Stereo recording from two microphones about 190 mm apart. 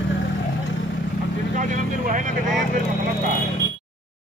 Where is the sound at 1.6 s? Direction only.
45° right (ahead or behind).